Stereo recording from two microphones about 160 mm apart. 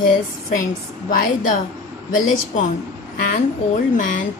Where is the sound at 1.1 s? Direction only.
55° left (ahead or behind).